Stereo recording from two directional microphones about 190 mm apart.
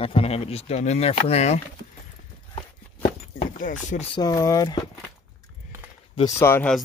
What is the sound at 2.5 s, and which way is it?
Walk, 30° left (ahead or behind).